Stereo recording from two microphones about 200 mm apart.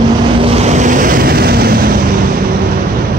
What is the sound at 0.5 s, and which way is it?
Vehicle, 35° right (ahead or behind).